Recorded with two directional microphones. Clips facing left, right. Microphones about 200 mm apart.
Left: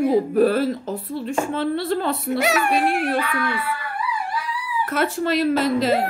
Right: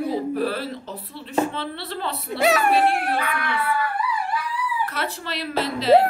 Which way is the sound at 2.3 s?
35° right (ahead or behind).